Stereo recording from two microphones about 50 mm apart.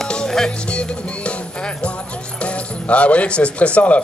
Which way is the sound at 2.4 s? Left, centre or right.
Left.